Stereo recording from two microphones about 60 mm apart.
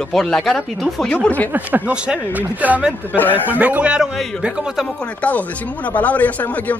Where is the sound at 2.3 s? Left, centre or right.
Right.